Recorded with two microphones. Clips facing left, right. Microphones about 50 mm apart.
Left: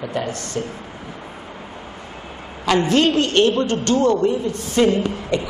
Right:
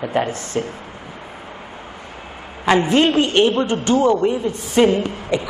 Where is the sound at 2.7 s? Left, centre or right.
Centre.